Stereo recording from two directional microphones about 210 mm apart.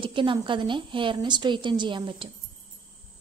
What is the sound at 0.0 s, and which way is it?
A woman's voice, 25° right (ahead or behind).